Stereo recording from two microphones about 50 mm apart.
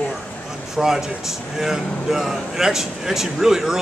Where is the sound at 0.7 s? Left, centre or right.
Centre.